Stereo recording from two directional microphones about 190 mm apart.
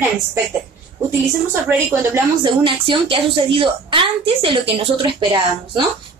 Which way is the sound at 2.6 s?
25° right (ahead or behind).